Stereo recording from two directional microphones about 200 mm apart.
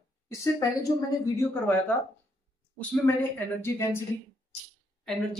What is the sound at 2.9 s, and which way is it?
Speech, 10° left (ahead or behind).